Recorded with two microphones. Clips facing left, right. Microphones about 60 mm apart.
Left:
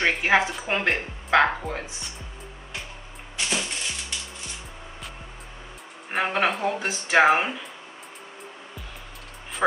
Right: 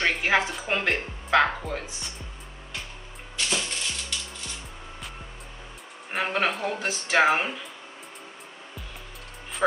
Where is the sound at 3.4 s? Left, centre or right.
Centre.